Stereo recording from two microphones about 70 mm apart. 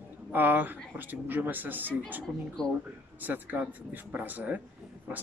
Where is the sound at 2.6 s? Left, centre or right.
Centre.